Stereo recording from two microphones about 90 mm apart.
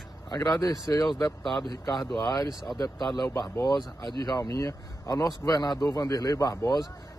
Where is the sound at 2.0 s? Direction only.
5° left (ahead or behind).